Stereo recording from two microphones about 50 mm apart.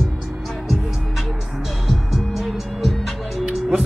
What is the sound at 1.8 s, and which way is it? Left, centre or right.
Music, centre.